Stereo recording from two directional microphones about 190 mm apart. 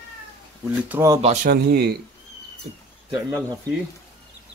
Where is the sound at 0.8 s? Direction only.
15° right (ahead or behind).